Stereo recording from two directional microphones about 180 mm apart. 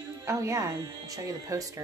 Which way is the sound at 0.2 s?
15° right (ahead or behind).